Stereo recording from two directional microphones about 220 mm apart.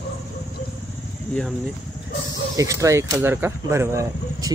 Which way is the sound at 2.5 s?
15° right (ahead or behind).